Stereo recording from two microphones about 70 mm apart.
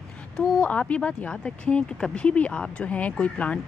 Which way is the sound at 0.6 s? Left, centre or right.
Centre.